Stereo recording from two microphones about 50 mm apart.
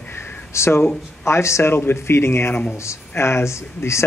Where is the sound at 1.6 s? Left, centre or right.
Left.